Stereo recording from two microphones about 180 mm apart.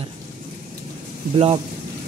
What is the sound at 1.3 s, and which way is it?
Speech, 35° right (ahead or behind).